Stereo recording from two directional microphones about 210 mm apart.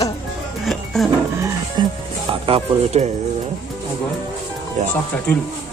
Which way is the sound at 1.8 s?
25° right (ahead or behind).